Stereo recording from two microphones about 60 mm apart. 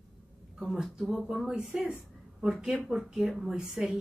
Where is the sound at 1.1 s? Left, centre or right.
Centre.